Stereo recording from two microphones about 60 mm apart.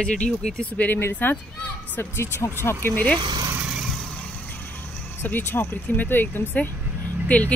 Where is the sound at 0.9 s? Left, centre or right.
Left.